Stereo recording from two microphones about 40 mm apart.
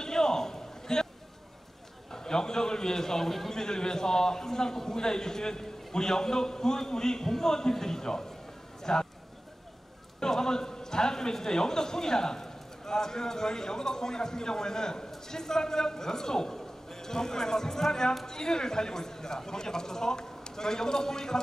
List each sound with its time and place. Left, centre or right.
0.0 s a sound: centre
2.0 s a man's voice: centre
10.2 s a man's voice: centre